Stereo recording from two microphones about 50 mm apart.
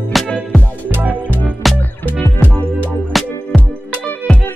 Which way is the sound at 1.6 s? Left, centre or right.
Centre.